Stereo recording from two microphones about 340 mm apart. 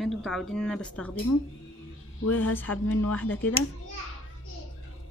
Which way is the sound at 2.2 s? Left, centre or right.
Left.